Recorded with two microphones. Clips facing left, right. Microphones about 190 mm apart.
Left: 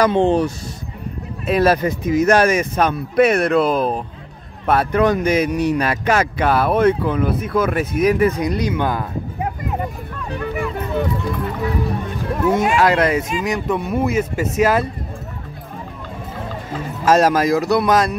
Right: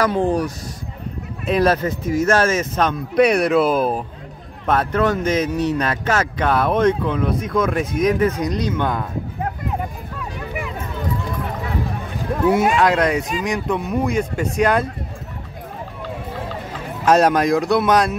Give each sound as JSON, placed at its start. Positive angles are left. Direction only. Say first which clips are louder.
{"t": 0.0, "sound": "speech", "louder": "left 3 dB", "side_deg": 25}
{"t": 1.4, "sound": "speech", "louder": "left 2 dB", "side_deg": 5}
{"t": 4.6, "sound": "speech", "louder": "left 2 dB", "side_deg": 10}
{"t": 12.4, "sound": "speech", "louder": "even", "side_deg": -5}
{"t": 17.0, "sound": "speech", "louder": "even", "side_deg": 0}